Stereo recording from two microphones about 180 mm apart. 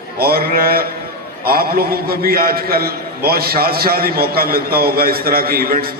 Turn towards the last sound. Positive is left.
turn(degrees=-55)  # may be behind; listen again after turning